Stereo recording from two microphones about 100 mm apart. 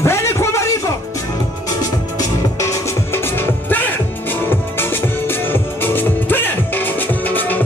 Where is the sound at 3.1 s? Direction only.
20° left (ahead or behind).